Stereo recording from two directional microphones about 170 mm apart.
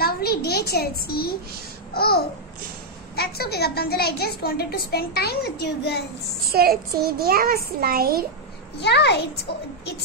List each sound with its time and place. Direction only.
0.0 s a child's voice: 65° left (ahead or behind)
2.0 s babbling: 65° left (ahead or behind)
3.2 s a woman's voice: 70° left (ahead or behind)
6.5 s a child's voice: 65° right (ahead or behind)
8.7 s a woman's voice: 80° left